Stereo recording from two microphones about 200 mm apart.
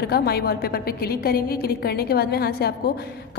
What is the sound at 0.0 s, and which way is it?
A woman's voice, 50° left (ahead or behind).